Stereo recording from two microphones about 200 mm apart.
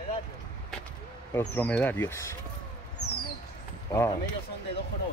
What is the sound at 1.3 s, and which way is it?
Speech, 5° left (ahead or behind).